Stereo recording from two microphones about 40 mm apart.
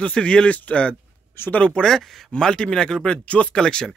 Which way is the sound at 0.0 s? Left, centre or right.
Left.